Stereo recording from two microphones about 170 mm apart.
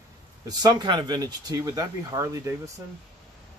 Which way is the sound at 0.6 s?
25° right (ahead or behind).